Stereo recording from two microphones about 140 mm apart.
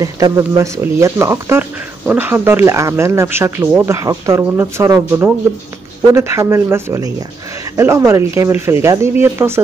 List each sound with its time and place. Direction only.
0.0 s speech: 25° right (ahead or behind)